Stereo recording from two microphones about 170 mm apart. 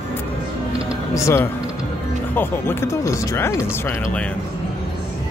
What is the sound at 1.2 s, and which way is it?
Speech, 15° left (ahead or behind).